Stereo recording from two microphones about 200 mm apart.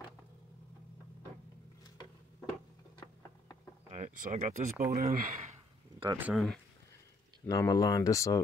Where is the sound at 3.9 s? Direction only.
40° right (ahead or behind).